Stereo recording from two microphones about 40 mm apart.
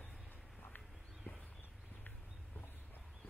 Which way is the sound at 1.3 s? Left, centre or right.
Left.